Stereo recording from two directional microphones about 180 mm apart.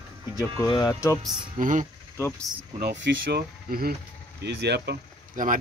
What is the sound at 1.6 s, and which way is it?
Speech, 45° right (ahead or behind).